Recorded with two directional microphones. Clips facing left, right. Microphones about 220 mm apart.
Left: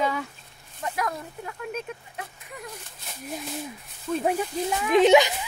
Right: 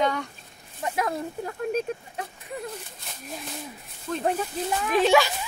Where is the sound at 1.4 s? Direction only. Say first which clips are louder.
Right 6 dB; 35° right (ahead or behind).